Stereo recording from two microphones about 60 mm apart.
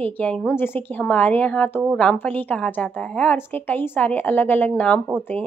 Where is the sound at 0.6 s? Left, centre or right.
Left.